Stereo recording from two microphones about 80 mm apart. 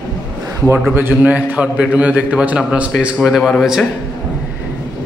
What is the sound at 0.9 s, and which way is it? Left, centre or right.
A man's voice, right.